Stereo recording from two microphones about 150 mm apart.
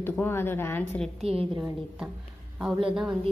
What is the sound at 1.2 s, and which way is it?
Speech, 40° right (ahead or behind).